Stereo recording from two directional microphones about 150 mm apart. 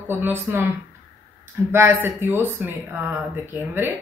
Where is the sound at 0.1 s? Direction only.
15° right (ahead or behind).